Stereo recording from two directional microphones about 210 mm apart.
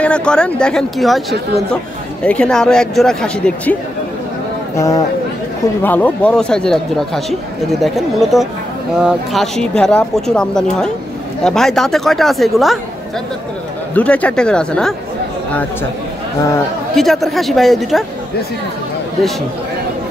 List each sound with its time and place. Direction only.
0.0 s speech: 5° left (ahead or behind)
2.2 s speech: 5° left (ahead or behind)
4.7 s speech: 15° left (ahead or behind)
13.9 s speech: 5° left (ahead or behind)
16.9 s speech: centre (ahead or behind)